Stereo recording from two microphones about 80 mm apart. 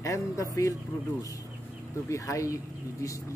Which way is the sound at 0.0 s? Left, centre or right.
Left.